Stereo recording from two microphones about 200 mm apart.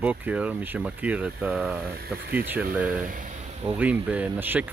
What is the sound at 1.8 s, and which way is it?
Speech, 50° right (ahead or behind).